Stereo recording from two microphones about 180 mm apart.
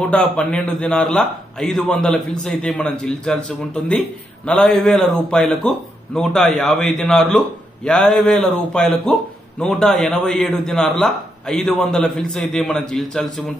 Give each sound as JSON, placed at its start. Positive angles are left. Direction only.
{"t": 0.0, "sound": "a man's voice", "side_deg": 5}